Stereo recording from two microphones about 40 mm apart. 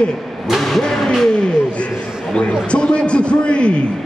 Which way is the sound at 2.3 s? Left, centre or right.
Left.